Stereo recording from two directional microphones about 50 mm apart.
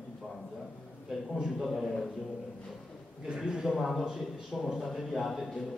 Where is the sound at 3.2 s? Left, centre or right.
Centre.